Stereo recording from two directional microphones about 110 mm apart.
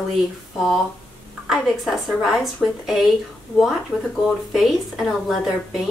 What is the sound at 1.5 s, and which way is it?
A woman's voice, centre (ahead or behind).